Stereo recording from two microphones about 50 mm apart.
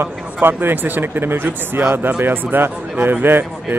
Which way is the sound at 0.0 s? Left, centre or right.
Right.